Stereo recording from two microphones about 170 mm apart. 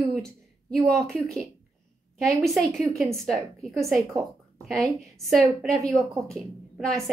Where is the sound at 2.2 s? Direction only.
Centre (ahead or behind).